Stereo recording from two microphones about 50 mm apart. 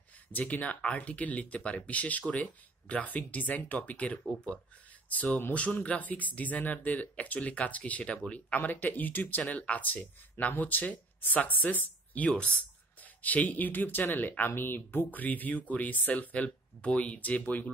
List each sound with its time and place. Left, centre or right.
0.3 s speech: left
8.5 s speech: left